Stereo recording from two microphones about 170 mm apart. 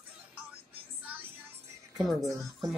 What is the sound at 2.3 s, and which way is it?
Speech, 20° right (ahead or behind).